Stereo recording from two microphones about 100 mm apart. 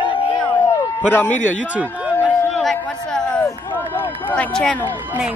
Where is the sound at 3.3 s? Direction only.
20° left (ahead or behind).